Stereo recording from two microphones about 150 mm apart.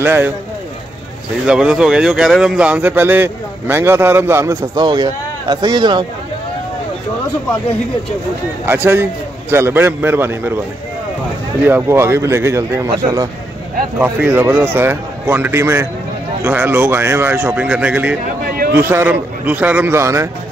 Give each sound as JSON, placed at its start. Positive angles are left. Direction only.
{"t": 0.0, "sound": "speech", "side_deg": -15}
{"t": 1.4, "sound": "speech", "side_deg": -5}
{"t": 4.8, "sound": "a man's voice", "side_deg": -30}
{"t": 8.6, "sound": "speech", "side_deg": -15}
{"t": 11.6, "sound": "speech", "side_deg": -15}
{"t": 13.9, "sound": "speech", "side_deg": -15}